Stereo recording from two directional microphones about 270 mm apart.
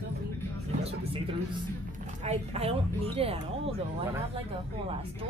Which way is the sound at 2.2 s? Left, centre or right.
Right.